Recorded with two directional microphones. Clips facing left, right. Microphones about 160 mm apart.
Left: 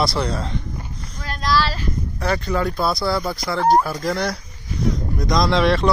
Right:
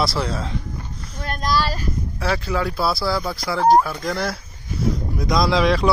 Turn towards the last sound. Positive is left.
turn(degrees=0)  # may be behind; listen again after turning